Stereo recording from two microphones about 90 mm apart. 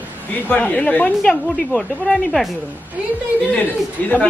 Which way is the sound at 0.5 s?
15° left (ahead or behind).